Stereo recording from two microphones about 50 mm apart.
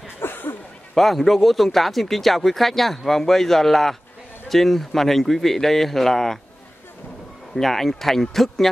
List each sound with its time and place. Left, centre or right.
0.2 s a sound: left
0.9 s speech: centre
7.5 s speech: centre